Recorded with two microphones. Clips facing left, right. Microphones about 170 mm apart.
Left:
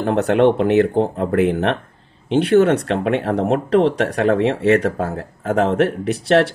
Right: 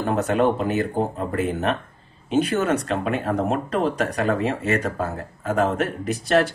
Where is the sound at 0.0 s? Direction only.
70° left (ahead or behind).